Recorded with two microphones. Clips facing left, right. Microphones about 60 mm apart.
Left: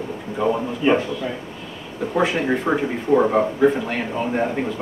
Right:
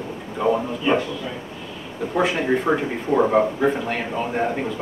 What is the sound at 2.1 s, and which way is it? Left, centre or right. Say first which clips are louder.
Speech: even; centre.